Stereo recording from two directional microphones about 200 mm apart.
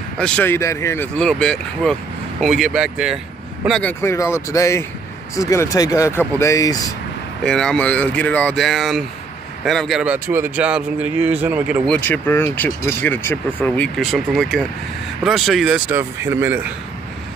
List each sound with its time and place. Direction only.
0.2 s speech: 10° left (ahead or behind)
4.0 s speech: 15° left (ahead or behind)
7.4 s a man's voice: 5° left (ahead or behind)
11.9 s a man's voice: 10° left (ahead or behind); by 16.6 s 10° right (ahead or behind)